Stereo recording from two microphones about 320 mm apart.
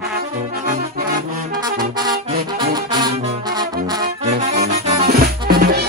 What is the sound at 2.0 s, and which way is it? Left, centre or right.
Music, centre.